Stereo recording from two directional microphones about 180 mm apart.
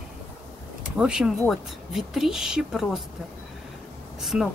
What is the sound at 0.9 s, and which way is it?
Speech, 5° right (ahead or behind).